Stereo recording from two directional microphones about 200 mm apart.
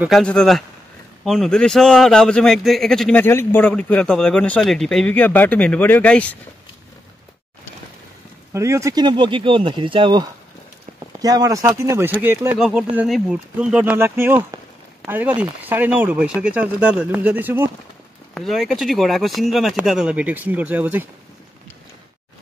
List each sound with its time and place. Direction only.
0.0 s a man's voice: centre (ahead or behind)
8.5 s speech: 15° right (ahead or behind)
12.5 s a man's voice: centre (ahead or behind)